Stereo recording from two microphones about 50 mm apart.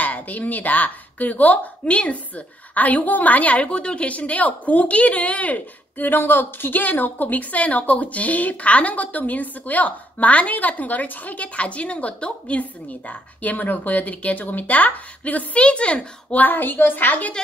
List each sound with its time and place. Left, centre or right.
0.0 s speech: left
16.3 s speech: left